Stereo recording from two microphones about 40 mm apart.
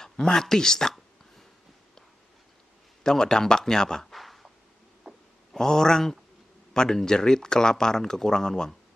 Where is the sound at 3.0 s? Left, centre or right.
Centre.